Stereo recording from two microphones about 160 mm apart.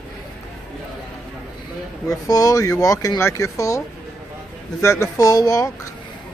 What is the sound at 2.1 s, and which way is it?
Speech, 20° left (ahead or behind).